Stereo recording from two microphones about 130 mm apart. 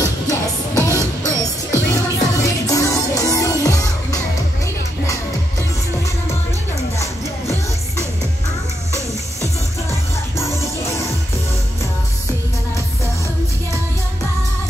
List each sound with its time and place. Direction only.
0.7 s music: 20° right (ahead or behind)
1.4 s music: 25° left (ahead or behind)
7.0 s music: 20° left (ahead or behind)
9.8 s music: 20° left (ahead or behind)